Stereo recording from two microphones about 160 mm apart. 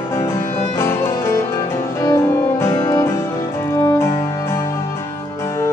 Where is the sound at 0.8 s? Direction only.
15° left (ahead or behind).